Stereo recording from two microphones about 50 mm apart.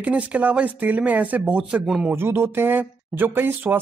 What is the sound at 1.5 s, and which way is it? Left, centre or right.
Speech, right.